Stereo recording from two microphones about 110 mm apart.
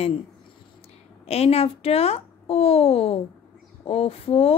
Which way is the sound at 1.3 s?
65° left (ahead or behind).